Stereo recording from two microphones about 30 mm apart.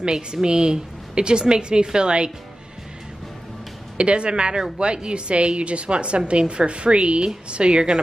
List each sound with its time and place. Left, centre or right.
0.0 s a woman's voice: right
4.0 s a woman's voice: right